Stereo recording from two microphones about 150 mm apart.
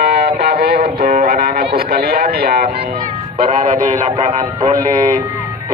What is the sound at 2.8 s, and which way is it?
Music, 80° right.